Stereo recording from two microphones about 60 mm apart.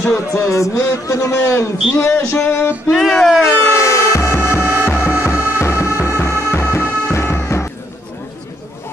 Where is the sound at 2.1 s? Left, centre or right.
Left.